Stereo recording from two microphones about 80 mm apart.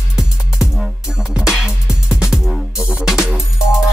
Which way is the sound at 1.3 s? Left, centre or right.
Centre.